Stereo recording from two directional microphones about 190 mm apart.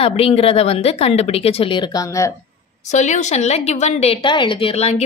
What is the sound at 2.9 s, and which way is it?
A woman's voice, 40° left (ahead or behind).